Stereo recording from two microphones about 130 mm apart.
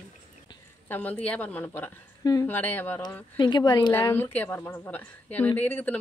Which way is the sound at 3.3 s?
35° left (ahead or behind).